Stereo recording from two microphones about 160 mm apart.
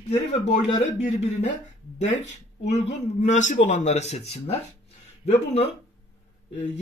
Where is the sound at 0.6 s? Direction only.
50° left (ahead or behind).